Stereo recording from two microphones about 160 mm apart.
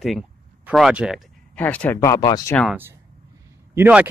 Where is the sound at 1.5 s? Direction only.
10° left (ahead or behind); by 2.5 s 25° left (ahead or behind).